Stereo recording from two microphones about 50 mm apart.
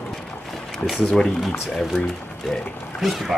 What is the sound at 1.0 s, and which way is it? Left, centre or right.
Speech, centre.